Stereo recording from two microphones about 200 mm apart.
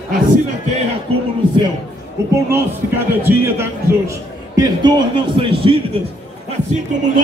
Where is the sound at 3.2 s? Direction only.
15° right (ahead or behind).